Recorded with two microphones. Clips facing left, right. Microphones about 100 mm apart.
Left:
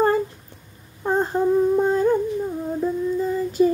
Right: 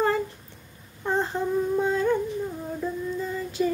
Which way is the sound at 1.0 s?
45° left (ahead or behind).